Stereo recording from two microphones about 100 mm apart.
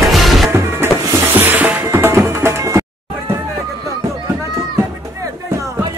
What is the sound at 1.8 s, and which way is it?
Music, 25° right (ahead or behind).